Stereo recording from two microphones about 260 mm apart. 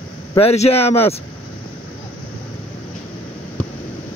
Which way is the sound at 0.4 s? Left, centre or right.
Left.